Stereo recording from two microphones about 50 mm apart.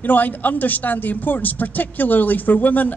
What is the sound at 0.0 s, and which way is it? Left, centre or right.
Speech, left.